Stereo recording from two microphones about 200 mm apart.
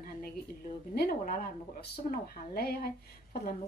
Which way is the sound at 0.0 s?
50° left (ahead or behind).